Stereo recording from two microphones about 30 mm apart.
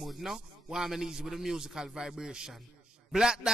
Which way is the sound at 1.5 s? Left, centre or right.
Right.